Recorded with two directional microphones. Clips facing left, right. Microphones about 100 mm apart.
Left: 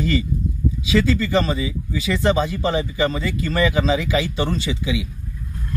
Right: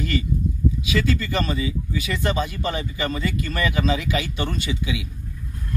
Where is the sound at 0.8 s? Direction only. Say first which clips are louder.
Left 7 dB; 25° left (ahead or behind).